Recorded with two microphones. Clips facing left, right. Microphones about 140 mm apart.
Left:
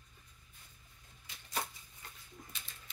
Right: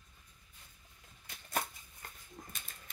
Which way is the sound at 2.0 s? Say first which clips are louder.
Right 2 dB; 50° right (ahead or behind).